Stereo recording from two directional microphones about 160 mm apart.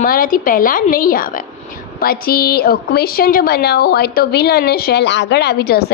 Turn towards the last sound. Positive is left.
turn(degrees=80)